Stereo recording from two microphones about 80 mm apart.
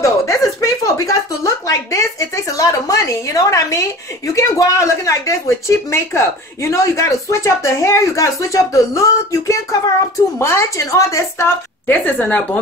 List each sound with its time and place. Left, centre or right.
0.0 s a sound: left
4.4 s speech: left
11.9 s a woman's voice: left